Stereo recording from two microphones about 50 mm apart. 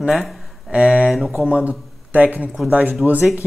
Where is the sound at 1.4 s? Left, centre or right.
Right.